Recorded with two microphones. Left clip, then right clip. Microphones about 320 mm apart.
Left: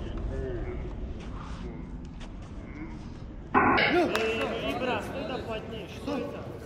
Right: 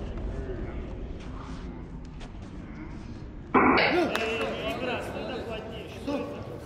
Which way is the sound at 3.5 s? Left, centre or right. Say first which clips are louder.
Right 1 dB; right.